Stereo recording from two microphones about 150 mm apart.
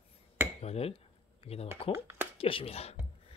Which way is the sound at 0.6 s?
45° left (ahead or behind).